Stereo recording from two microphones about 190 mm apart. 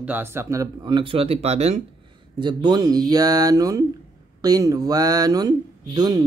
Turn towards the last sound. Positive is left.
turn(degrees=-20)  # may be behind; listen again after turning